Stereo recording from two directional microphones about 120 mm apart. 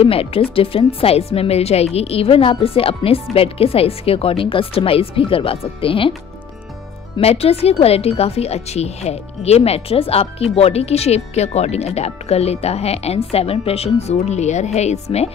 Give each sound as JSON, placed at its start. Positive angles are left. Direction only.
{"t": 0.0, "sound": "speech", "side_deg": 50}
{"t": 7.2, "sound": "speech", "side_deg": 55}